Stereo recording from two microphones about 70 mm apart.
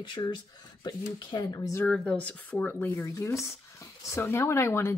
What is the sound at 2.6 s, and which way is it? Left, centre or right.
Speech, left.